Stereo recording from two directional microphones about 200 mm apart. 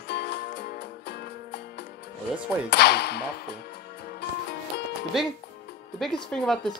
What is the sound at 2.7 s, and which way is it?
Whip, 55° left (ahead or behind).